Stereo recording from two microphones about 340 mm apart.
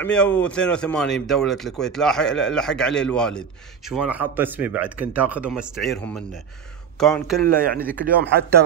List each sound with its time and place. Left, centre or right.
0.0 s speech: centre
8.0 s speech: right